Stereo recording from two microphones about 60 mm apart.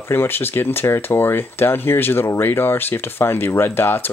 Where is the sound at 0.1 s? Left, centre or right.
Left.